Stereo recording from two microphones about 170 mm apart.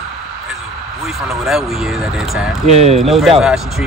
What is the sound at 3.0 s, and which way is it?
Speech, centre (ahead or behind).